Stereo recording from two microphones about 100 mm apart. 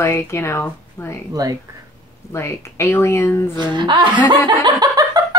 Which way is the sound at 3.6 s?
50° right (ahead or behind).